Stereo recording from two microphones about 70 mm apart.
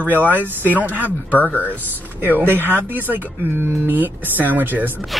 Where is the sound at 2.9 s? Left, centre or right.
Right.